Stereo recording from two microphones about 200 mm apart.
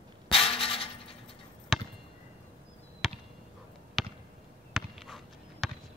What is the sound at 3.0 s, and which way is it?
Basketball bounce, centre (ahead or behind).